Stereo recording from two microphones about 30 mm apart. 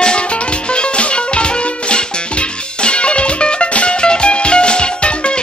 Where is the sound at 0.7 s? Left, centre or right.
Left.